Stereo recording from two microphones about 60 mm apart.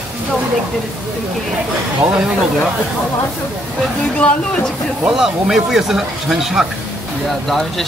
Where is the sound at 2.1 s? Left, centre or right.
Centre.